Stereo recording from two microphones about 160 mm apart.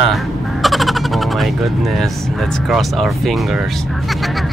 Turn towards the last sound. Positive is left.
turn(degrees=0)  # may be behind; listen again after turning